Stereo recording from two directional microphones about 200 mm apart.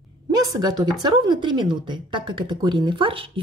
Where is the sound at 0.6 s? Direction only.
20° right (ahead or behind).